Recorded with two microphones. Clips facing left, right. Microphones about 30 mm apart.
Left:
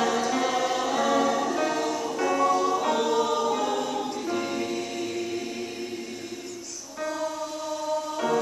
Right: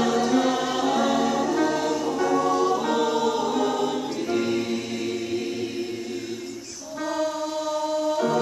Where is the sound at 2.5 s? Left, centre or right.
Centre.